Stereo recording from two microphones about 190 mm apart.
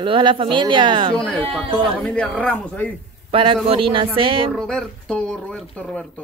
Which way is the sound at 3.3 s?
25° right (ahead or behind).